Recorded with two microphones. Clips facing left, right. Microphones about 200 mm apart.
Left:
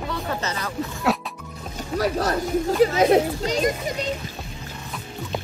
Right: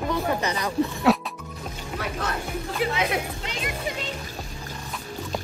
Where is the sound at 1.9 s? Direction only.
40° left (ahead or behind).